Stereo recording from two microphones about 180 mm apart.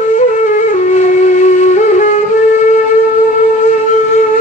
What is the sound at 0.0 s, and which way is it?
Flute, 45° left (ahead or behind).